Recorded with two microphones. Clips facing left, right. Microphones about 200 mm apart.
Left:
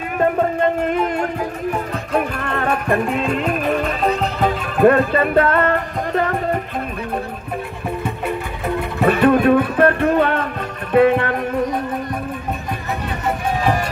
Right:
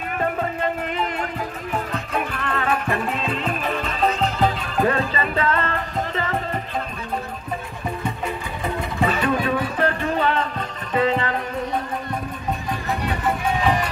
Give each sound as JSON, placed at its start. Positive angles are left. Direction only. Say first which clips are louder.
{"t": 0.2, "sound": "music", "louder": "left 8 dB", "side_deg": 45}
{"t": 9.0, "sound": "music", "louder": "left 8 dB", "side_deg": 60}